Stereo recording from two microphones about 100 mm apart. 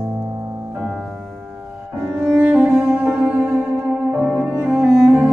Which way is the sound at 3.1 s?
10° right (ahead or behind).